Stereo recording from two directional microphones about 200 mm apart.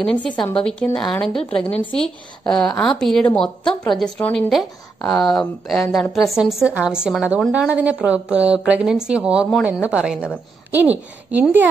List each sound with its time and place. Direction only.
0.0 s a woman's voice: 5° left (ahead or behind)
2.4 s a woman's voice: 5° left (ahead or behind)
3.3 s a woman's voice: 20° left (ahead or behind)
3.6 s a woman's voice: 5° left (ahead or behind)